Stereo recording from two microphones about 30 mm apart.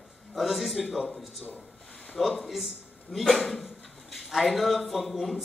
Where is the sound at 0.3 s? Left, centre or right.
Centre.